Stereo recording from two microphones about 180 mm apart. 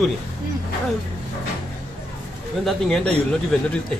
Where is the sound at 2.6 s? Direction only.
Centre (ahead or behind).